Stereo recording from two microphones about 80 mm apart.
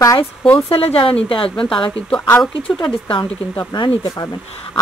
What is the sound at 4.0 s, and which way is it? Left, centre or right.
Speech, left.